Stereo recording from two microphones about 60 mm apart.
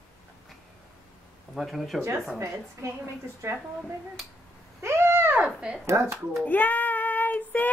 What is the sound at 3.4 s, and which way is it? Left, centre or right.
Speech, right.